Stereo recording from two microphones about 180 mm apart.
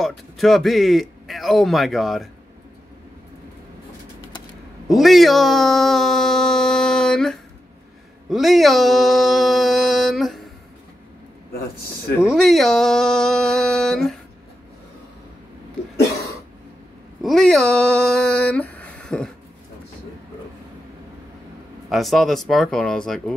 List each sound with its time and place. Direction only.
0.0 s a man's voice: centre (ahead or behind)
4.8 s a man's voice: centre (ahead or behind)
12.2 s a man's voice: 5° right (ahead or behind)
17.2 s speech: centre (ahead or behind)
21.8 s a man's voice: centre (ahead or behind)